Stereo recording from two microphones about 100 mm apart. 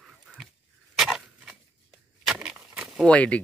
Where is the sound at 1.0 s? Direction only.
5° right (ahead or behind).